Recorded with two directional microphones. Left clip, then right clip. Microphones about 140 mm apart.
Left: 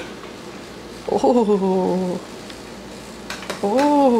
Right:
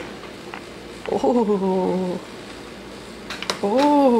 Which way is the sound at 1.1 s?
10° left (ahead or behind).